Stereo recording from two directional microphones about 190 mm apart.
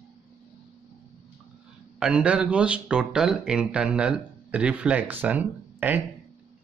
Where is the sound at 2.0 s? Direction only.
5° right (ahead or behind).